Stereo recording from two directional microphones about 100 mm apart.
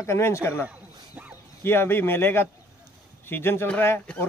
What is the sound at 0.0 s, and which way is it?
Speech, 25° left (ahead or behind).